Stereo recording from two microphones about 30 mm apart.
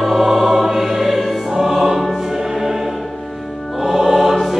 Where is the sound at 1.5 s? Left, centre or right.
Centre.